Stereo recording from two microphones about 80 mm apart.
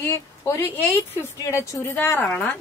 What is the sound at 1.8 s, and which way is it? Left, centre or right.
Speech, left.